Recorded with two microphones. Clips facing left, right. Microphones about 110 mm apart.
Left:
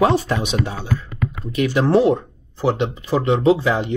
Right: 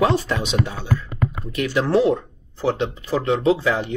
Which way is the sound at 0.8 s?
5° right (ahead or behind).